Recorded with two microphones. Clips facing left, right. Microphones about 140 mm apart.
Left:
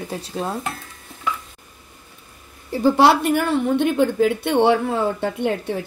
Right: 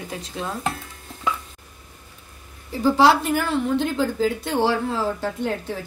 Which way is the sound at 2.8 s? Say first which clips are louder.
Left 2 dB; 60° left (ahead or behind).